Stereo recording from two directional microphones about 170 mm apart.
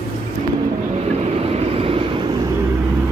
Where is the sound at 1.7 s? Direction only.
35° right (ahead or behind).